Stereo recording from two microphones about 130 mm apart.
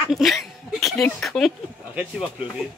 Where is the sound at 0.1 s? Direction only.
Centre (ahead or behind).